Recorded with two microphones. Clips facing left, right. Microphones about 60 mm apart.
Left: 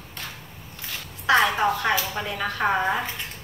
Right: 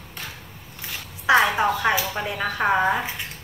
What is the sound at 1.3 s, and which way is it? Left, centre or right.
A woman's voice, centre.